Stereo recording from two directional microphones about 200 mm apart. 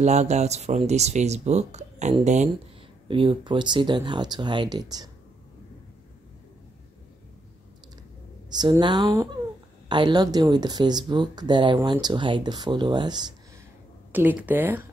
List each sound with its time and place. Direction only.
0.0 s speech: 35° right (ahead or behind); by 5.1 s 20° right (ahead or behind)
8.5 s speech: 20° right (ahead or behind)
14.1 s speech: 10° right (ahead or behind)